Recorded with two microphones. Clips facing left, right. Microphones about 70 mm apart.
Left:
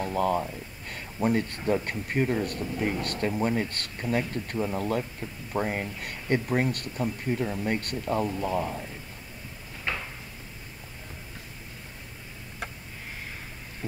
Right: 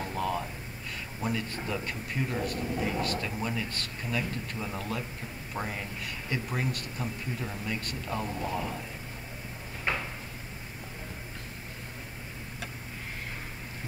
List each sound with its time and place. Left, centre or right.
0.0 s speech: left
7.7 s a man's voice: left
9.9 s drawer open or close: right